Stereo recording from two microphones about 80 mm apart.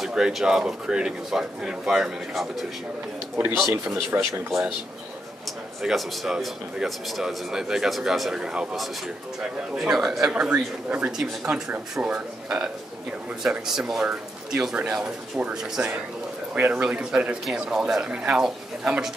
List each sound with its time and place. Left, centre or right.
0.0 s speech: centre
3.6 s speech: right
4.3 s speech: centre
5.8 s speech: centre
16.5 s speech: right
16.8 s speech: centre